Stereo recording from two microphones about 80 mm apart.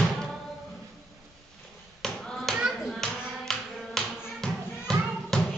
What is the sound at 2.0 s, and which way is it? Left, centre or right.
Tap, centre.